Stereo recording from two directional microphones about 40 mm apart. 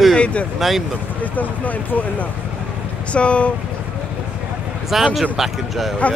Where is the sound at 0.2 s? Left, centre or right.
Left.